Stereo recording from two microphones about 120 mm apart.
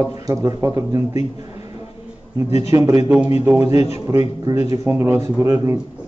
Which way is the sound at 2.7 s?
25° right (ahead or behind).